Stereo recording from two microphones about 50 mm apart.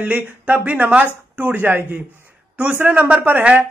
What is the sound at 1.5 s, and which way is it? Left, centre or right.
Speech, right.